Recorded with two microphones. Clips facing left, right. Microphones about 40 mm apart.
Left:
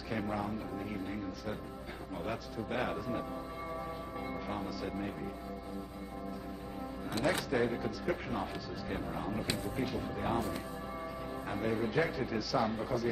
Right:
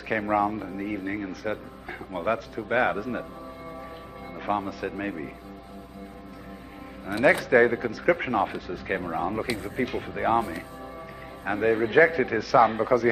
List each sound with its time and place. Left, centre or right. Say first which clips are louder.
0.1 s speech: right 12 dB; right
4.4 s speech: right 15 dB; right
7.2 s speech: right 13 dB; right
11.4 s speech: right 11 dB; right